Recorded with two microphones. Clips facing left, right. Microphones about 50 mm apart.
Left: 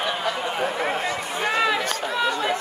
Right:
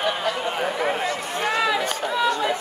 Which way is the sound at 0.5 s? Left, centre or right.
Centre.